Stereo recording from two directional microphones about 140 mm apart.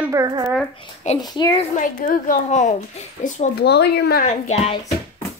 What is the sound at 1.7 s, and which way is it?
A woman's voice, 70° left (ahead or behind).